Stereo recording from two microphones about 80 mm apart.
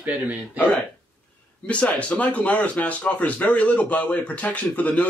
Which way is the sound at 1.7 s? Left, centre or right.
Centre.